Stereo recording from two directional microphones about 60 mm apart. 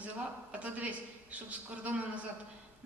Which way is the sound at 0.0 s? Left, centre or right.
Right.